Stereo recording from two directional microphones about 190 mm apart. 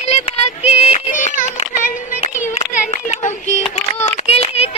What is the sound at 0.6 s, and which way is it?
Music, 30° left (ahead or behind).